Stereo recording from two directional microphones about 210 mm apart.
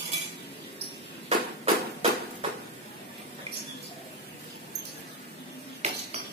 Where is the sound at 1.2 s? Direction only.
30° right (ahead or behind).